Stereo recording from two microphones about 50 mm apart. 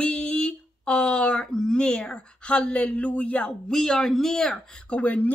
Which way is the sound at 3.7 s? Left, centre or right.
Centre.